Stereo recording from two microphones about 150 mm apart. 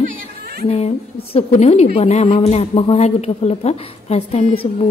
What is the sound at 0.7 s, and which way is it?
Speech, 45° left (ahead or behind).